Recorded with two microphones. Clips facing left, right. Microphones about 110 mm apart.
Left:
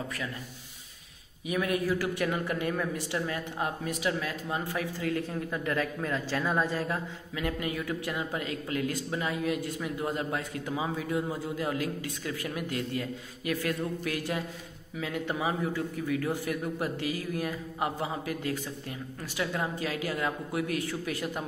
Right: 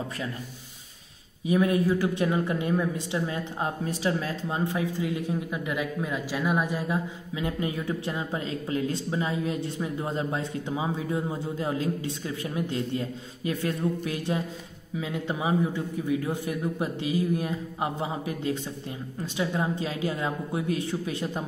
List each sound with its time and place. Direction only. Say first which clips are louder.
1.4 s a woman's voice: right 6 dB; 30° right (ahead or behind)